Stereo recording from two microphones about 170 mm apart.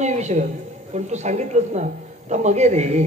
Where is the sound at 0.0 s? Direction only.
45° right (ahead or behind).